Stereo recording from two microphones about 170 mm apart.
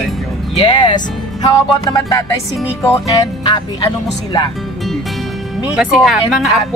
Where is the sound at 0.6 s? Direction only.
30° left (ahead or behind).